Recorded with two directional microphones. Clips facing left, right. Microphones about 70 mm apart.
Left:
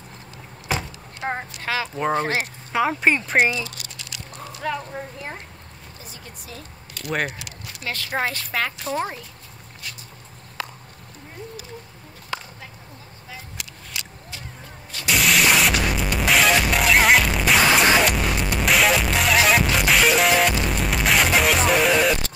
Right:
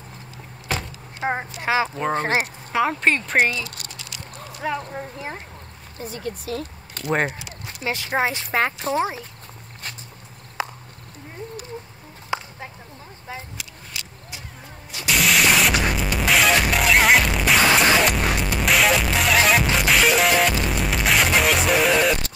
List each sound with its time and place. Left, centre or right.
0.7 s vehicle: centre
1.2 s speech: centre
2.7 s speech: centre
4.6 s speech: centre
5.9 s speech: right
7.1 s speech: right
7.9 s speech: centre
8.9 s speech: centre
10.6 s a sound: centre
12.3 s a sound: centre
15.0 s music: centre